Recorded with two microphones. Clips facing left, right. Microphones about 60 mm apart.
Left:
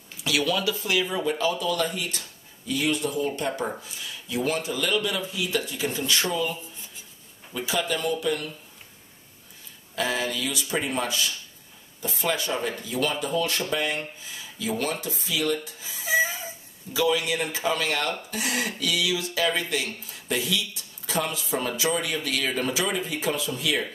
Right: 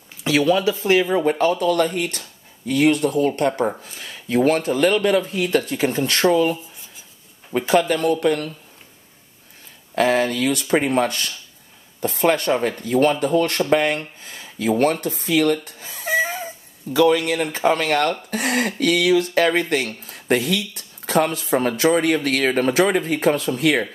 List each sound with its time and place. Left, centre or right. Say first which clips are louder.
0.2 s speech: right 8 dB; right
9.9 s speech: right 9 dB; right